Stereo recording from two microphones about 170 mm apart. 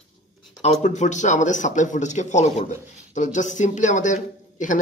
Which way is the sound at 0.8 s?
45° left (ahead or behind).